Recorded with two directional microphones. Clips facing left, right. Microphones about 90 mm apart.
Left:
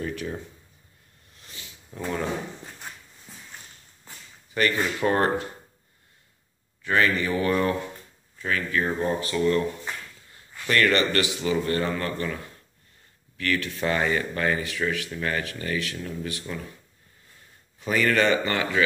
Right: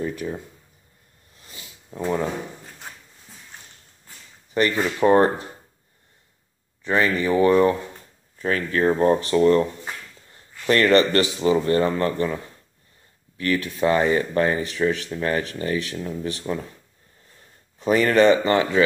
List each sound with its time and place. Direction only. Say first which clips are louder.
0.2 s speech: right 3 dB; 5° right (ahead or behind)
1.4 s a sound: right 1 dB; 30° right (ahead or behind)
4.6 s speech: right 4 dB; 25° right (ahead or behind)
6.8 s speech: right 2 dB; 25° right (ahead or behind)
8.4 s speech: right 4 dB; 40° right (ahead or behind)
9.2 s speech: right 6 dB; 30° right (ahead or behind)
17.7 s speech: right 5 dB; 30° right (ahead or behind)